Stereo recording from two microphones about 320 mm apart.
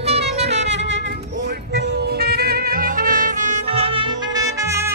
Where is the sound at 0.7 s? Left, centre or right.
Right.